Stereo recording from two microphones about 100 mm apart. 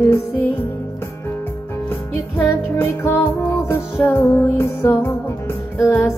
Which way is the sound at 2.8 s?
25° left (ahead or behind).